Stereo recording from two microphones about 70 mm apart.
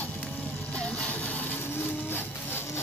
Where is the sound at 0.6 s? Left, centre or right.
Centre.